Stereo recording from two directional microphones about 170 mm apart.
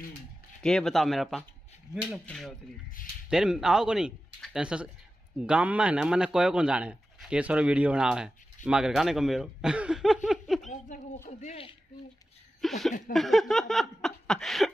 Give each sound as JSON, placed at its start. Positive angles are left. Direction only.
{"t": 0.6, "sound": "speech", "side_deg": 5}
{"t": 11.2, "sound": "a man's voice", "side_deg": 40}
{"t": 12.6, "sound": "speech", "side_deg": 0}